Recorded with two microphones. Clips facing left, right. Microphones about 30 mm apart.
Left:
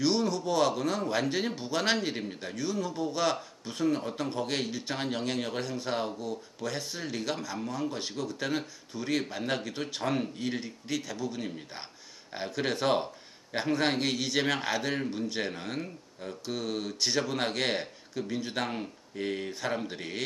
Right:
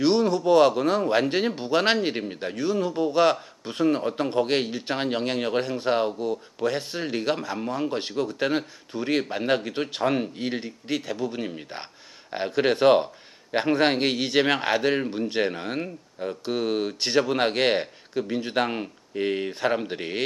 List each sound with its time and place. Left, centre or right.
0.0 s speech: right